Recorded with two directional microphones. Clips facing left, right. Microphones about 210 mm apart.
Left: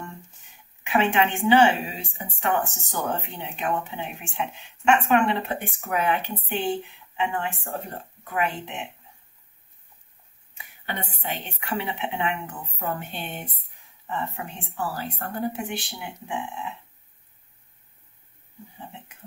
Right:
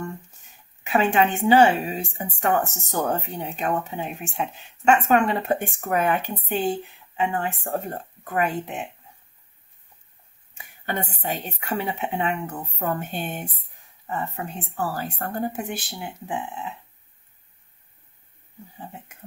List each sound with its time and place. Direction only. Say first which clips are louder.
0.8 s speech: right 2 dB; 40° right (ahead or behind)
10.6 s speech: right 5 dB; 45° right (ahead or behind)